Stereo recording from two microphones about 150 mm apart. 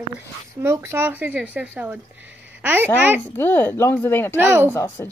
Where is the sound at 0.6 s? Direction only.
15° right (ahead or behind).